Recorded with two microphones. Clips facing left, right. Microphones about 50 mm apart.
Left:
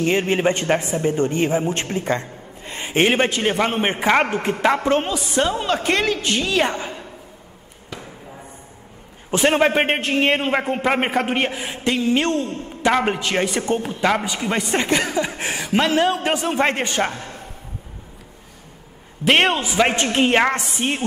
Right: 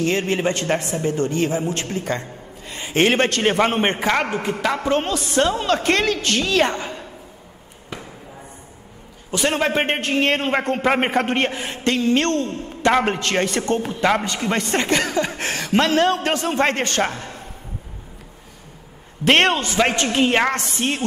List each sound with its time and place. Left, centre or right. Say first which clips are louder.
0.0 s a man's voice: left 2 dB; left
3.1 s a man's voice: even; centre
3.4 s a man's voice: right 2 dB; centre
4.0 s a man's voice: left 3 dB; left
5.0 s a man's voice: right 1 dB; centre
9.3 s a man's voice: left 4 dB; centre
9.8 s a man's voice: left 1 dB; centre
17.0 s a man's voice: even; centre
19.2 s a man's voice: right 1 dB; centre
19.9 s a man's voice: left 1 dB; left